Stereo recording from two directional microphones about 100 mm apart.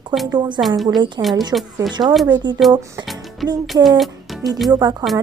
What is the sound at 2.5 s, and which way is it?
Speech, 50° right (ahead or behind).